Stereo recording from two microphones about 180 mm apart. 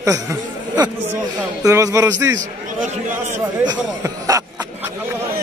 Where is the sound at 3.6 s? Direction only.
20° right (ahead or behind).